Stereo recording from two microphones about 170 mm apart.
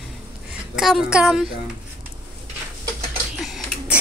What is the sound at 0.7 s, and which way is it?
Speech, centre (ahead or behind).